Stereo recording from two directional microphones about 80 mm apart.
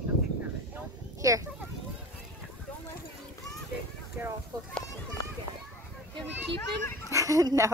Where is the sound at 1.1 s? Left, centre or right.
Right.